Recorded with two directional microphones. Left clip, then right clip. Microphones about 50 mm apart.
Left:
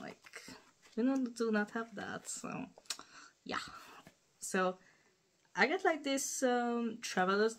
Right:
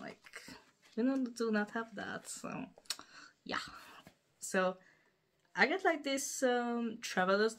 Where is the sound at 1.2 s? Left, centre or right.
Centre.